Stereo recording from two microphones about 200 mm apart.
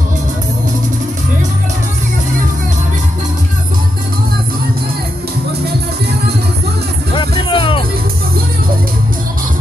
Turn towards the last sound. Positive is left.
turn(degrees=25)  # may be behind; listen again after turning